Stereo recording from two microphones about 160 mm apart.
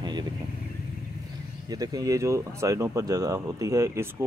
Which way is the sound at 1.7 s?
25° right (ahead or behind).